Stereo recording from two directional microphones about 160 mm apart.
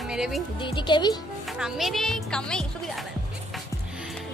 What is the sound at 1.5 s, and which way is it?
A woman's voice, centre (ahead or behind).